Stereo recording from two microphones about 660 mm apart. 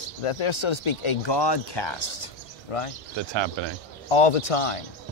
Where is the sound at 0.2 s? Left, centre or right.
Left.